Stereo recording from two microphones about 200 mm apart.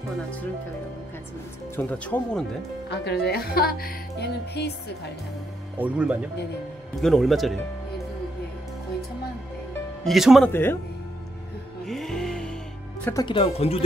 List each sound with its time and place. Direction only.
1.8 s speech: 10° left (ahead or behind)
2.9 s speech: 55° left (ahead or behind)
5.8 s speech: 5° right (ahead or behind)
10.0 s speech: centre (ahead or behind)
10.5 s speech: 10° left (ahead or behind)
11.8 s music: centre (ahead or behind)
13.0 s speech: 20° left (ahead or behind)